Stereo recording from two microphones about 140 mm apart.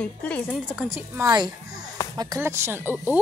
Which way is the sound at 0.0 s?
10° left (ahead or behind).